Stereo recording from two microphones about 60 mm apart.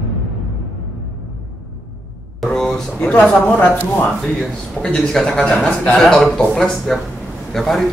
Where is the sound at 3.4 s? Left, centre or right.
Left.